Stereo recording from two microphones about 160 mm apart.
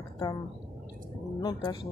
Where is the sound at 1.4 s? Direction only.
25° left (ahead or behind).